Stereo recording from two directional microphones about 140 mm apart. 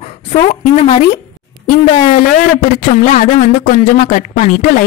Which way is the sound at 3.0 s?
65° left (ahead or behind).